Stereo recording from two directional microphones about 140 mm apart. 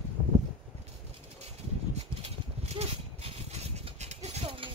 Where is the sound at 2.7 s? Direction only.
50° right (ahead or behind).